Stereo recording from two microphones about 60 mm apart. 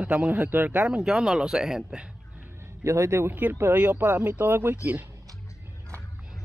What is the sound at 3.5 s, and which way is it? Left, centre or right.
Speech, right.